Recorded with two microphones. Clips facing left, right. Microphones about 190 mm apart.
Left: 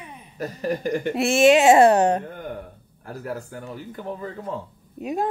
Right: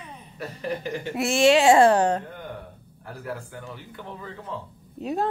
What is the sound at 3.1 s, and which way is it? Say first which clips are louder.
A man's voice: left 3 dB; 40° left (ahead or behind).